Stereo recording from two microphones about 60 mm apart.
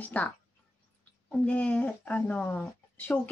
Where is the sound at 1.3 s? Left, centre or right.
Left.